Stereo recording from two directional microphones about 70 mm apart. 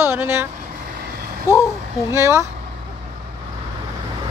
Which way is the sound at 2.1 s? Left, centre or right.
Right.